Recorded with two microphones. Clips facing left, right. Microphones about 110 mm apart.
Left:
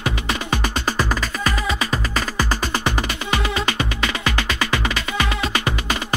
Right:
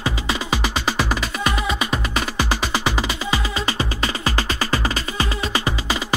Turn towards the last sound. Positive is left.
turn(degrees=-20)  # may be behind; listen again after turning